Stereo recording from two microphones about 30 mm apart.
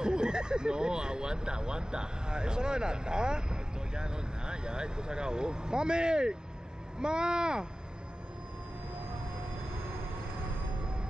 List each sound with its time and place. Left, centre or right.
0.0 s speech: right